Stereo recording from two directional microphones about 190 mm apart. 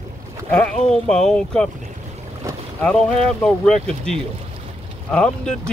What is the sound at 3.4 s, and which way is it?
Speech, 5° left (ahead or behind).